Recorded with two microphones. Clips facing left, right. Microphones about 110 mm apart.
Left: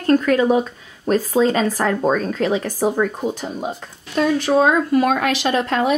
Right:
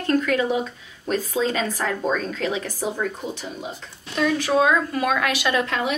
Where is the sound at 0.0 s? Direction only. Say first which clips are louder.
Left 5 dB; 40° left (ahead or behind).